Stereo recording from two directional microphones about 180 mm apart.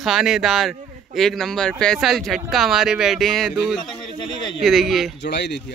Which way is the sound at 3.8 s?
25° left (ahead or behind).